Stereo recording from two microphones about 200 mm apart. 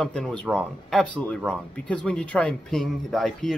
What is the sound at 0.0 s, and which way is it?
Speech, 5° left (ahead or behind).